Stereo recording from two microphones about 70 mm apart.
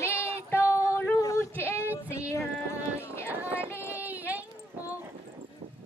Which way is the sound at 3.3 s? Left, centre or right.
Right.